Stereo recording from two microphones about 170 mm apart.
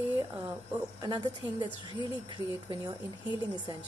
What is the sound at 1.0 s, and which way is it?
Speech, 20° right (ahead or behind).